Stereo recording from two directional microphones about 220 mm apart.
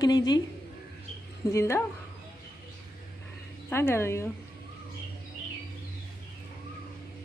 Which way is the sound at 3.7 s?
10° left (ahead or behind).